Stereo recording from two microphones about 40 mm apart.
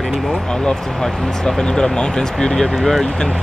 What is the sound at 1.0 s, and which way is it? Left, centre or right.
Speech, centre.